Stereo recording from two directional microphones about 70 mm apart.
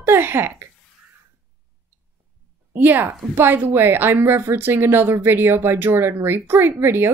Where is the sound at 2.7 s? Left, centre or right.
Right.